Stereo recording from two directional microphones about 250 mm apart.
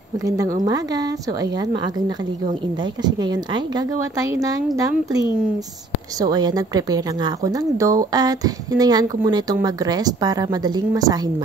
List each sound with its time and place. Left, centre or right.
0.7 s a woman's voice: centre
3.0 s a woman's voice: centre
6.2 s a woman's voice: centre